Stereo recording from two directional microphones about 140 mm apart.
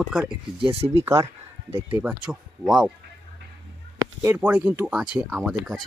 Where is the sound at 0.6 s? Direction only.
45° right (ahead or behind).